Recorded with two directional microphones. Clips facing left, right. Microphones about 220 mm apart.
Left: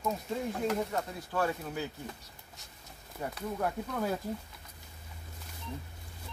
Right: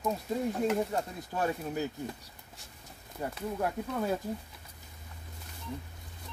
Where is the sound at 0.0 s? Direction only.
10° right (ahead or behind).